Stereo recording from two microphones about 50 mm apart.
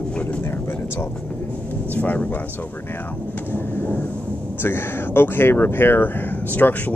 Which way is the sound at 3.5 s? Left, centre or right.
Left.